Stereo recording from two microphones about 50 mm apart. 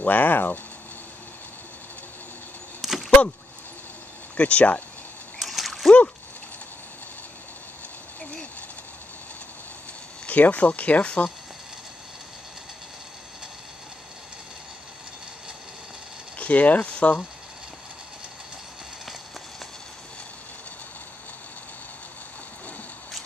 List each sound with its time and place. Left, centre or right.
0.0 s speech: left
2.8 s a sound: centre
4.4 s speech: left
5.4 s splash: centre
10.2 s speech: left
16.3 s speech: left